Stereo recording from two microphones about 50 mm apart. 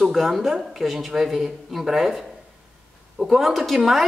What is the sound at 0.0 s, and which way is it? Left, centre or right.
Speech, centre.